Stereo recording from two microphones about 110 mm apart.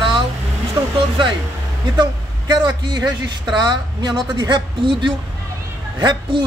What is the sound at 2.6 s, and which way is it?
A woman's voice, 40° right (ahead or behind).